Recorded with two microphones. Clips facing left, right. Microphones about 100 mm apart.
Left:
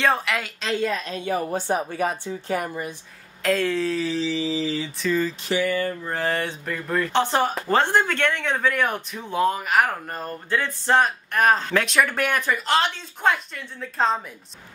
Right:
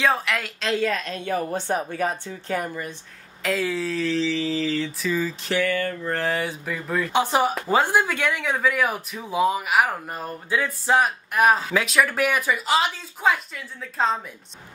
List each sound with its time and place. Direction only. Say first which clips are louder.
0.0 s a woman's voice: even; centre (ahead or behind); by 2.9 s 15° left (ahead or behind)
3.4 s speech: left 3 dB; 5° right (ahead or behind)